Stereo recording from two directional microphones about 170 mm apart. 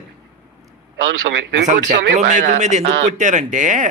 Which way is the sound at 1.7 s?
45° right (ahead or behind).